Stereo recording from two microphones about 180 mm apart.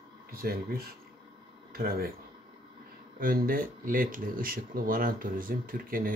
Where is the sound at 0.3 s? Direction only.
55° right (ahead or behind).